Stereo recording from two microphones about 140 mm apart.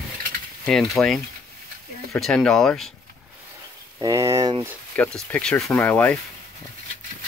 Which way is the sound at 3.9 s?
25° right (ahead or behind).